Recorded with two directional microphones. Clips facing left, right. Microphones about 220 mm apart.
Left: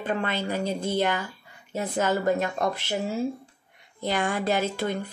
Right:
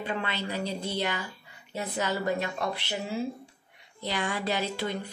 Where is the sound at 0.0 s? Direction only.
50° left (ahead or behind).